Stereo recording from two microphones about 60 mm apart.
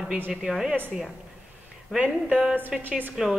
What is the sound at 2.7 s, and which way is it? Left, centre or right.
Speech, centre.